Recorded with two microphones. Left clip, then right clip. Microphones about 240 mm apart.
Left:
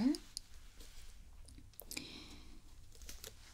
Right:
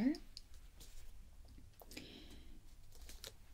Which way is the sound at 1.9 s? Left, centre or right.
Left.